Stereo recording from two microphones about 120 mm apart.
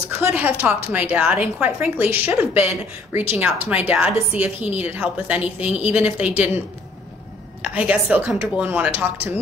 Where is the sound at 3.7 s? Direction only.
10° right (ahead or behind).